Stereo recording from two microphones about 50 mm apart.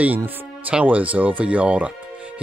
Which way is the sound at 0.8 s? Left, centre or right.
Right.